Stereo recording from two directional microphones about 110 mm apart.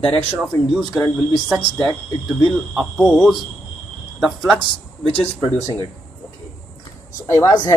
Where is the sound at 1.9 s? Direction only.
Centre (ahead or behind).